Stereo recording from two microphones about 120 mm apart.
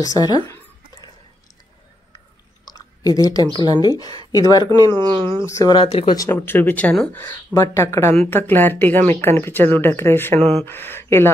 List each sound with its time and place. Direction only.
0.0 s speech: 30° left (ahead or behind)
2.6 s chewing: 30° left (ahead or behind)
3.5 s speech: 35° left (ahead or behind)
5.0 s speech: 45° right (ahead or behind)
5.5 s speech: 25° left (ahead or behind)
6.3 s speech: 15° left (ahead or behind)